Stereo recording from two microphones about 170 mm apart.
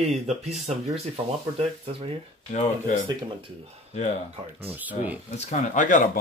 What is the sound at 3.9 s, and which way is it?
Speech, 40° left (ahead or behind).